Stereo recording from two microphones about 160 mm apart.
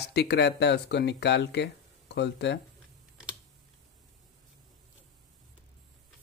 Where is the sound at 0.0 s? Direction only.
90° left.